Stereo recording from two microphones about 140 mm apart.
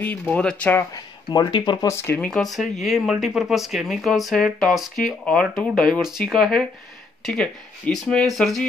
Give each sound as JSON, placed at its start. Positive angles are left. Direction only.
{"t": 0.3, "sound": "speech", "side_deg": 10}
{"t": 0.9, "sound": "speech", "side_deg": 25}
{"t": 2.0, "sound": "speech", "side_deg": 10}